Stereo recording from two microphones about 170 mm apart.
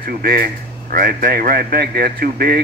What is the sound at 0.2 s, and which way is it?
Speech, 60° right (ahead or behind).